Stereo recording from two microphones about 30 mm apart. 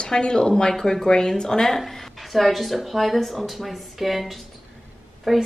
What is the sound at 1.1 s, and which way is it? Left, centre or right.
Speech, left.